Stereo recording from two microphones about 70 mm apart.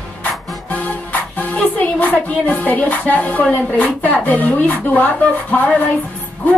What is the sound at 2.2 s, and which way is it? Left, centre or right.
Speech, left.